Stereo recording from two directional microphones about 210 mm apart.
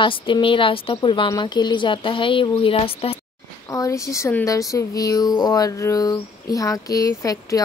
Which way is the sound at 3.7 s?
15° left (ahead or behind).